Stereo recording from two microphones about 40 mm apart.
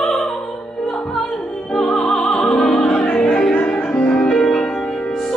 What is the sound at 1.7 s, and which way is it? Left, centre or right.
Music, centre.